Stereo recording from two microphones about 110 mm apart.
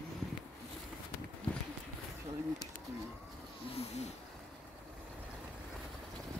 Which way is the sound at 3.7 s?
80° left.